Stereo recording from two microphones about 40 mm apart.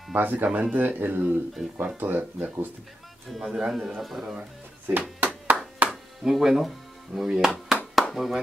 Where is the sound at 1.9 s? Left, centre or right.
Right.